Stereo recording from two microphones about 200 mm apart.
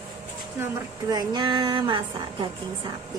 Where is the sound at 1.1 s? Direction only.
20° right (ahead or behind).